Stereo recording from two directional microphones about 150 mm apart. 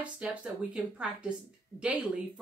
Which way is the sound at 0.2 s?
5° right (ahead or behind).